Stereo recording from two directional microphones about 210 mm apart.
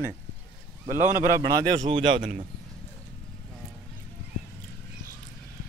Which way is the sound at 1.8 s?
25° right (ahead or behind).